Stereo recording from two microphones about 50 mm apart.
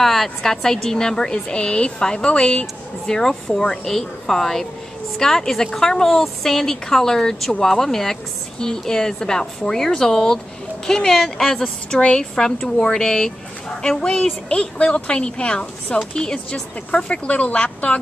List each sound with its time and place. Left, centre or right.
0.0 s a woman's voice: centre
14.5 s a woman's voice: centre